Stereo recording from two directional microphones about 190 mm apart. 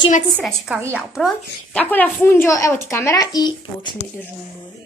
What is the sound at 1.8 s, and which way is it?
Speech, 10° left (ahead or behind).